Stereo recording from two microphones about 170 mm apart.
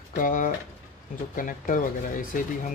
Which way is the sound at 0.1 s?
50° left (ahead or behind).